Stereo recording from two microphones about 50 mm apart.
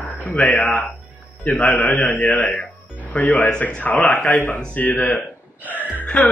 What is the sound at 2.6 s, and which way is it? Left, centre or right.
Music, left.